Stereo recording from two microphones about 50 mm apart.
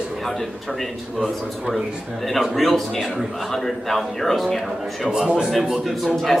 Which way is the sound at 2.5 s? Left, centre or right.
Centre.